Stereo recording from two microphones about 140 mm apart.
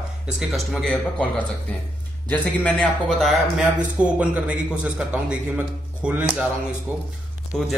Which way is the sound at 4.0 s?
10° right (ahead or behind).